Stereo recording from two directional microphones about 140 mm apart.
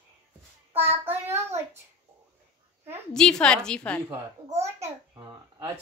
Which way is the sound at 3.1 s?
5° left (ahead or behind).